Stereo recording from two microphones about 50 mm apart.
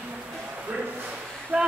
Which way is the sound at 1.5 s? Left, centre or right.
Right.